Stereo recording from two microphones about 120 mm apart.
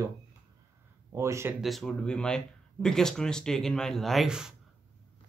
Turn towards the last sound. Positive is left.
turn(degrees=-5)  # may be behind; listen again after turning